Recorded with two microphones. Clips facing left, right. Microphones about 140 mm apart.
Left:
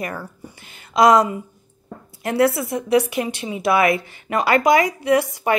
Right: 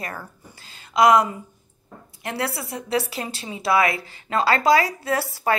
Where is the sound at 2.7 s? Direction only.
20° left (ahead or behind).